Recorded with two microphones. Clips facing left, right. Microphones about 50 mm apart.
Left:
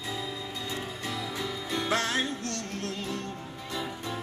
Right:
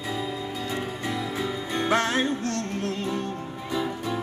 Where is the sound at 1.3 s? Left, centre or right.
Right.